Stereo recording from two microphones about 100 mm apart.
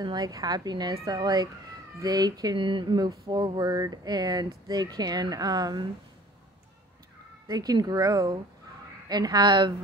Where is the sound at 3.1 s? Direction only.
40° right (ahead or behind).